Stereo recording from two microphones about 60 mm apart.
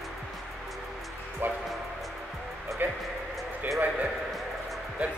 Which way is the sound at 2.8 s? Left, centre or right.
Right.